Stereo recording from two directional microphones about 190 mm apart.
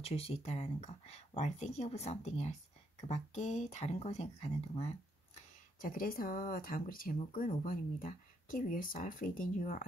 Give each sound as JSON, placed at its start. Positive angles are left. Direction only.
{"t": 0.0, "sound": "speech", "side_deg": 30}